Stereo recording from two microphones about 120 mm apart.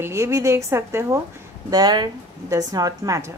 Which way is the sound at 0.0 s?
25° right (ahead or behind).